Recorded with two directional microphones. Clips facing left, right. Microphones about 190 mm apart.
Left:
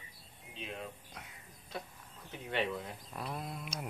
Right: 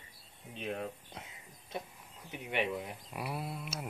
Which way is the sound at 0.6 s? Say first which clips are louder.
Right 6 dB; 50° right (ahead or behind).